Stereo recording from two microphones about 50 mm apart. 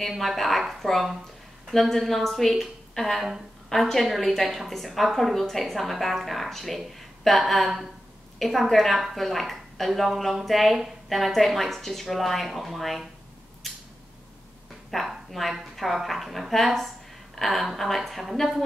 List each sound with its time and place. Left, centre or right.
0.0 s a woman's voice: centre
3.7 s a woman's voice: centre
13.6 s a sound: centre
14.9 s a woman's voice: centre